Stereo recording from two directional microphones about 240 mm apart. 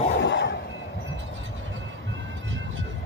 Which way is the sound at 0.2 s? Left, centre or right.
Left.